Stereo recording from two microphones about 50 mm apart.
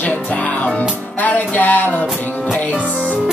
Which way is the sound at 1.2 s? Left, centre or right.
Left.